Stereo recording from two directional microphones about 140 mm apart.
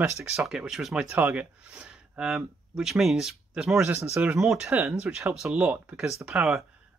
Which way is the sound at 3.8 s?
20° right (ahead or behind).